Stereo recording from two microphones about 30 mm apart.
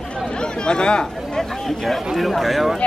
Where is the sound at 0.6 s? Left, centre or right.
Left.